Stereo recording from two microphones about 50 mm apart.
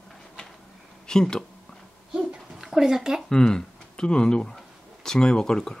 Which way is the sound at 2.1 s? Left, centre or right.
Centre.